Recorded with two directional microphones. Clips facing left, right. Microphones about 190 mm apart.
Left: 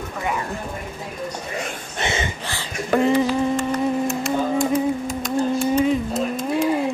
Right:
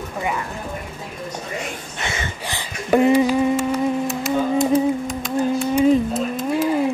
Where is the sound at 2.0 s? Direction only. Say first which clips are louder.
Left 5 dB; 25° left (ahead or behind).